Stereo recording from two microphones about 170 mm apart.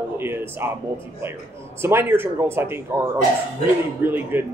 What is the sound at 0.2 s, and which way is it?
Speech, 15° right (ahead or behind).